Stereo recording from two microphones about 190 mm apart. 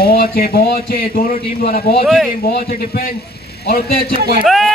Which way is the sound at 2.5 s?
55° left (ahead or behind).